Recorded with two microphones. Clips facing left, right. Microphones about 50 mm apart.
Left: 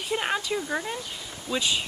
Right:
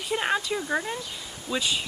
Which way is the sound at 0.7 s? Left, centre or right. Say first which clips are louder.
Right 2 dB; centre.